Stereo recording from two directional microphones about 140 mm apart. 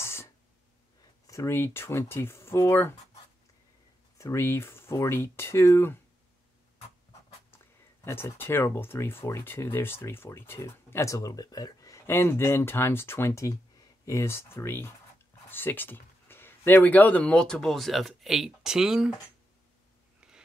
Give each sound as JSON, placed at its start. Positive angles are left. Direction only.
{"t": 0.0, "sound": "a sound", "side_deg": 20}
{"t": 1.2, "sound": "speech", "side_deg": 20}
{"t": 4.2, "sound": "speech", "side_deg": 20}
{"t": 7.5, "sound": "speech", "side_deg": 15}